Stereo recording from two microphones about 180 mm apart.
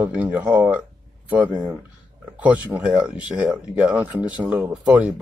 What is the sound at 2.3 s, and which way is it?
Speech, 10° right (ahead or behind).